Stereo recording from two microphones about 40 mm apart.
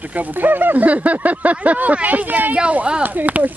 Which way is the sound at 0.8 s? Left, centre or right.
Right.